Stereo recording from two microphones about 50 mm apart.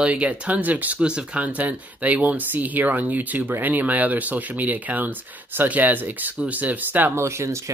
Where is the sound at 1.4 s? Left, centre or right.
Right.